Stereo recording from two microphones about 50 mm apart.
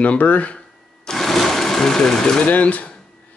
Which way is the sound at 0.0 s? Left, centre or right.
Left.